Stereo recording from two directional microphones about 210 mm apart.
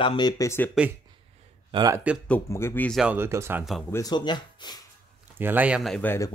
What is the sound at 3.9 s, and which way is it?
Speech, 20° left (ahead or behind).